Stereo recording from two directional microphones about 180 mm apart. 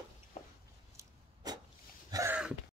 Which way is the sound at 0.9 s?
20° right (ahead or behind).